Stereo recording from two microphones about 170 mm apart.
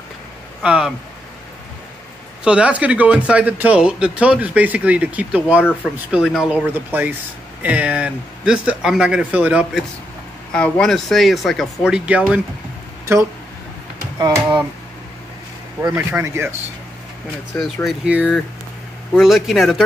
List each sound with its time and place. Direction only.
0.6 s speech: 5° right (ahead or behind)
2.4 s a man's voice: 5° right (ahead or behind)
10.5 s speech: 5° left (ahead or behind)
14.2 s speech: 25° right (ahead or behind)
15.8 s a man's voice: 10° right (ahead or behind)
17.8 s a man's voice: 5° right (ahead or behind)